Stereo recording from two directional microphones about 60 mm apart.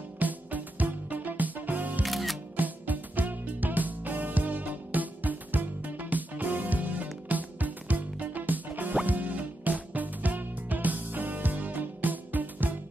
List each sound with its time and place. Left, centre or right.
0.2 s music: right
2.0 s music: centre
2.5 s music: right